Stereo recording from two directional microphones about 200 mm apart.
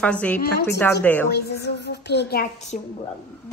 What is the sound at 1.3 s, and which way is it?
A woman's voice, 55° left (ahead or behind).